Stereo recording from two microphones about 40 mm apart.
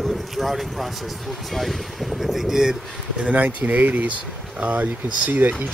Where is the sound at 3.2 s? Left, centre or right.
Right.